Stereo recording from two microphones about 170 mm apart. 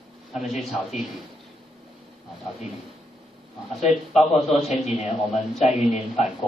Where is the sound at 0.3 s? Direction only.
Centre (ahead or behind).